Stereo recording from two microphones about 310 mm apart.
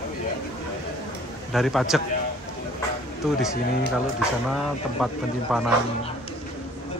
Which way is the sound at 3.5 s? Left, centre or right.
Left.